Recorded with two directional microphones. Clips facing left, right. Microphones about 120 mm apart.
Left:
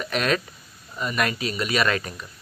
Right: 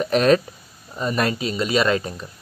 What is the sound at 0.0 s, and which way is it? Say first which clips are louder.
Speech: right 8 dB; 35° right (ahead or behind).